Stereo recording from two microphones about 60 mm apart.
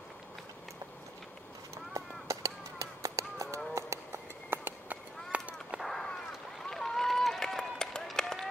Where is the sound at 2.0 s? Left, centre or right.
Right.